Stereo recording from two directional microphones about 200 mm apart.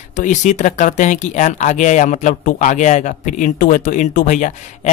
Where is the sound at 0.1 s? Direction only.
40° left (ahead or behind).